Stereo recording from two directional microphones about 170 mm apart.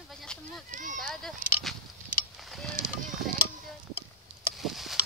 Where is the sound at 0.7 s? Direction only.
50° right (ahead or behind).